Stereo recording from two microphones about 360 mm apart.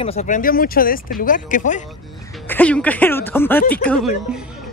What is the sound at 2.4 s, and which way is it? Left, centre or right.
Speech, centre.